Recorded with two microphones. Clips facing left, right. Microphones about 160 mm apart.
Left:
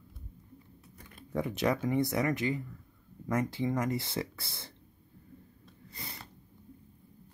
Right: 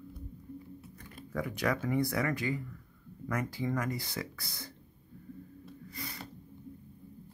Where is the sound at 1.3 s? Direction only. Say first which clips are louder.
Left 3 dB; 25° left (ahead or behind).